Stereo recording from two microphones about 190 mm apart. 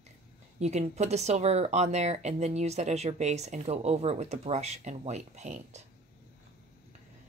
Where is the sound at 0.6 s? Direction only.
35° right (ahead or behind).